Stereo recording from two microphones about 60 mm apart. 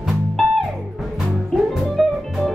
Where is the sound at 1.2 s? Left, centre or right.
Centre.